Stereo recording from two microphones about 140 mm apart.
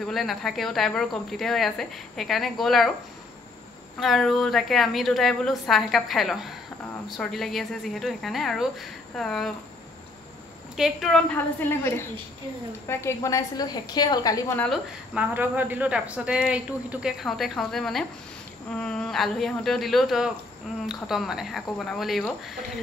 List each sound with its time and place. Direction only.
0.0 s speech: centre (ahead or behind)
4.0 s speech: centre (ahead or behind)
10.8 s speech: centre (ahead or behind)
11.3 s a woman's voice: 15° left (ahead or behind)
15.1 s speech: 15° right (ahead or behind)